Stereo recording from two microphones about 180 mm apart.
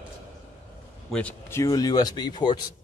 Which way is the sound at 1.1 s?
5° left (ahead or behind).